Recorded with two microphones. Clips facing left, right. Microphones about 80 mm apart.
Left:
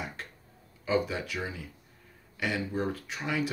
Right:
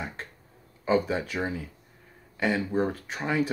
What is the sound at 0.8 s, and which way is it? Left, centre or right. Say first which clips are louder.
Speech: right 4 dB; right.